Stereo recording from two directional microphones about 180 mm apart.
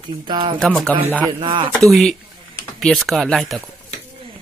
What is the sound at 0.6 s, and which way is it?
Speech, 5° left (ahead or behind).